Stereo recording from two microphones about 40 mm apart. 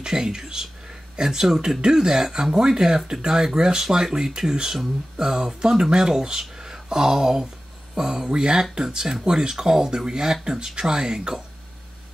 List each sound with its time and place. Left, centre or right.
0.0 s speech: centre